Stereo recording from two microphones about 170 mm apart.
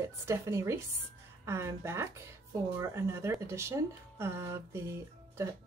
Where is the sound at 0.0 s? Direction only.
15° right (ahead or behind).